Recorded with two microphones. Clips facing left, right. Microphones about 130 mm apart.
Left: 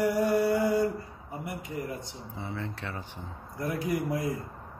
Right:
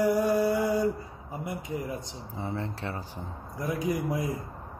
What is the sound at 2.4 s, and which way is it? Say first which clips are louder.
Speech: right 3 dB; 35° right (ahead or behind).